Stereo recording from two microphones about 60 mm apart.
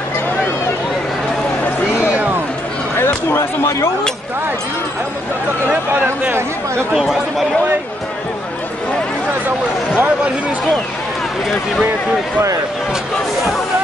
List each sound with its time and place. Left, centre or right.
3.3 s speech: left
6.9 s speech: centre
9.9 s speech: right